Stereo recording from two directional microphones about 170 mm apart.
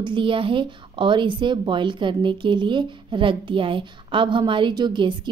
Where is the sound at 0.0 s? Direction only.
30° right (ahead or behind).